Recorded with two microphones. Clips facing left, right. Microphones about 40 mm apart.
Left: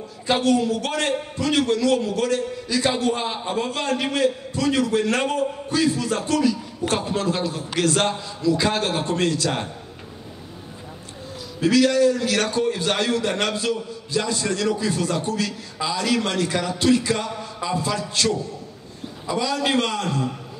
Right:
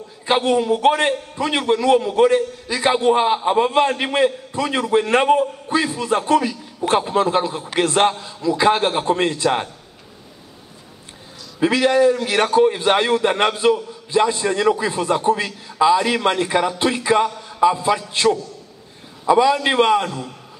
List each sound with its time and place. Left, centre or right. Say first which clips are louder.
0.3 s a man's voice: right 3 dB; right
11.6 s a man's voice: right 2 dB; right